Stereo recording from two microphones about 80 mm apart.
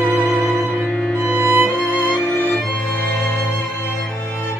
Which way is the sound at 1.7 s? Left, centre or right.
Left.